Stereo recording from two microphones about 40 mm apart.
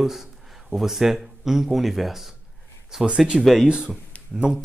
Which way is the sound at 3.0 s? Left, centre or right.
Right.